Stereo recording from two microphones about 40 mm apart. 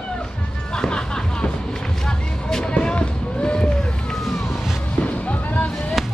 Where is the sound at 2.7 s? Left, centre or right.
Left.